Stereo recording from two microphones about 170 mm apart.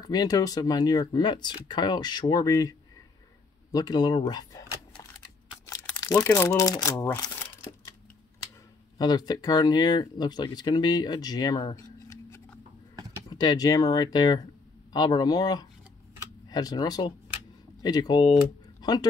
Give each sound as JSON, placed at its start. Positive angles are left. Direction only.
{"t": 0.0, "sound": "speech", "side_deg": 25}
{"t": 3.7, "sound": "speech", "side_deg": 25}
{"t": 5.7, "sound": "crumpling", "side_deg": 20}
{"t": 6.3, "sound": "speech", "side_deg": 20}
{"t": 8.9, "sound": "speech", "side_deg": 25}
{"t": 13.3, "sound": "speech", "side_deg": 25}